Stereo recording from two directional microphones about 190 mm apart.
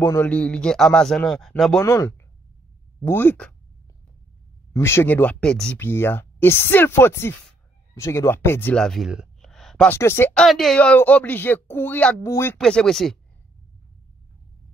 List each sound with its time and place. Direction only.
0.0 s a man's voice: 10° left (ahead or behind)
1.8 s speech: 20° left (ahead or behind)
4.7 s speech: 15° left (ahead or behind)
10.4 s speech: centre (ahead or behind)
12.5 s a man's voice: 5° left (ahead or behind)